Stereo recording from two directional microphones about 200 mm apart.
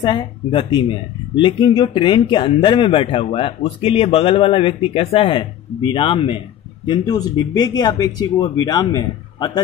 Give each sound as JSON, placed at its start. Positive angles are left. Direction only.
{"t": 0.0, "sound": "speech", "side_deg": 25}